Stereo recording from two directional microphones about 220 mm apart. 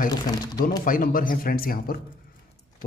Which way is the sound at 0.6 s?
40° left (ahead or behind).